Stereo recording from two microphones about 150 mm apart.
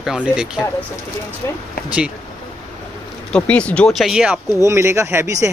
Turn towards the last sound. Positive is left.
turn(degrees=-20)  # may be behind; listen again after turning